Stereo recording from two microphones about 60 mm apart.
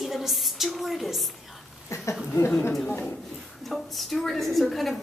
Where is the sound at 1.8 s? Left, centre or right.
Left.